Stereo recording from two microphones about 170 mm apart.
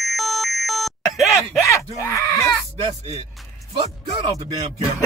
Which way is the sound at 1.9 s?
20° left (ahead or behind).